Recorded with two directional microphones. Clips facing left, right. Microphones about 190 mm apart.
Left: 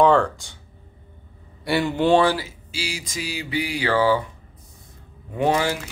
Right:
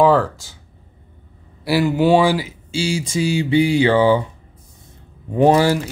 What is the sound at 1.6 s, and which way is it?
Speech, 5° right (ahead or behind).